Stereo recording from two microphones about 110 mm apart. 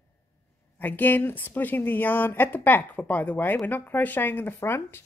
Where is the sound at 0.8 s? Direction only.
15° left (ahead or behind).